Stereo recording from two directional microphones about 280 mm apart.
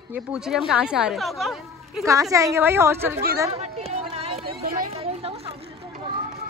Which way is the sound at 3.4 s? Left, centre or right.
Right.